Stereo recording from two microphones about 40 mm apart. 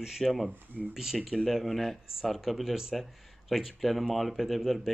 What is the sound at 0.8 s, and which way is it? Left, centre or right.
Speech, right.